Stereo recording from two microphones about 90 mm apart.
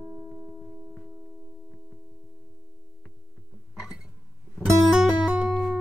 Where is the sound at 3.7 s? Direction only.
5° right (ahead or behind).